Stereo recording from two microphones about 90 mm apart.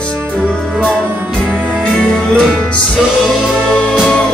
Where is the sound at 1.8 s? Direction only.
5° left (ahead or behind).